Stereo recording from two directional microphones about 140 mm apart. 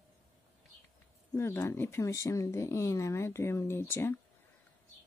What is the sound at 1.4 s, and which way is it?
Speech, 15° left (ahead or behind).